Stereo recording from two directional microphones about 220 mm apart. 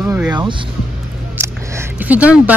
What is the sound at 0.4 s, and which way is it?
Music, 20° right (ahead or behind).